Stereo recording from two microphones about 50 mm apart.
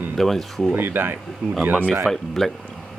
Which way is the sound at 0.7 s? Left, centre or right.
Right.